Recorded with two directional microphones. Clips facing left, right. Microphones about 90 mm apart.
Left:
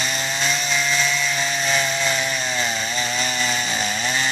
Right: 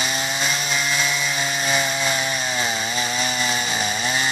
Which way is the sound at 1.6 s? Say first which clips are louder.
Even; 10° right (ahead or behind).